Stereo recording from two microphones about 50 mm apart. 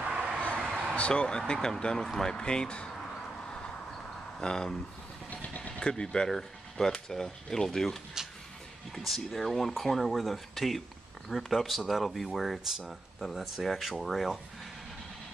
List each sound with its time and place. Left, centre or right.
0.0 s a sound: right
0.9 s speech: left
4.4 s speech: centre
5.3 s vehicle: left
5.7 s speech: centre